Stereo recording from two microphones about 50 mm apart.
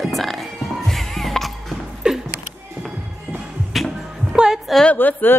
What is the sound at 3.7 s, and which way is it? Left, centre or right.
Music, centre.